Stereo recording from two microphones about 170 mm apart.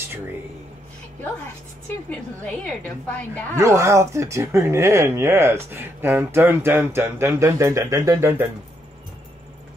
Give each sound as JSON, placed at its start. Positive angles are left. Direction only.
{"t": 2.0, "sound": "a woman's voice", "side_deg": 10}
{"t": 3.5, "sound": "speech", "side_deg": -20}